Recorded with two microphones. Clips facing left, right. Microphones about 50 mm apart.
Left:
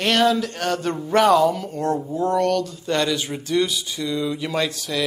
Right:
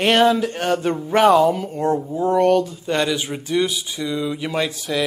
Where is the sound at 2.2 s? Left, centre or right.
Centre.